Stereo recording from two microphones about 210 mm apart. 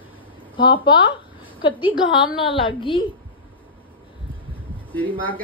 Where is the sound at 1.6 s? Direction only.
25° left (ahead or behind).